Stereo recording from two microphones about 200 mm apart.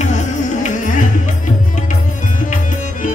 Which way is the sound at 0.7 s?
40° left (ahead or behind).